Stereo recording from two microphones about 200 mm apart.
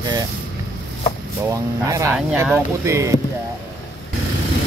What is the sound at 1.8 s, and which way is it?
Speech, 15° right (ahead or behind).